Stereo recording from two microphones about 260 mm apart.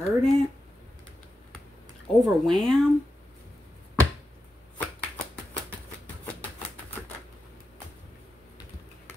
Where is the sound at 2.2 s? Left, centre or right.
Centre.